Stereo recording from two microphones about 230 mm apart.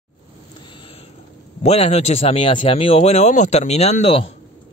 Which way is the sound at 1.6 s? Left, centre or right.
Left.